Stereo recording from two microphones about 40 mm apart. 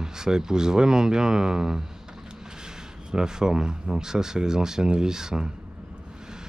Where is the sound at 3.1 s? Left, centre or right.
Centre.